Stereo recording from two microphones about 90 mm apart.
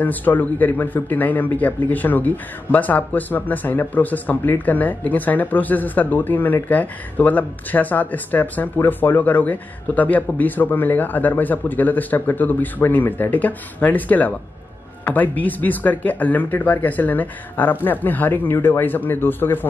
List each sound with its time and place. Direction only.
0.0 s a man's voice: 20° left (ahead or behind)